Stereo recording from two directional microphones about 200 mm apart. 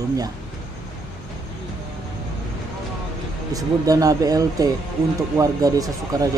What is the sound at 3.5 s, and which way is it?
Speech, 15° right (ahead or behind).